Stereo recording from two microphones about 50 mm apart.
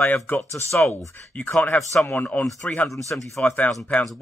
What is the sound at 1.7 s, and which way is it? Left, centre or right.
Speech, left.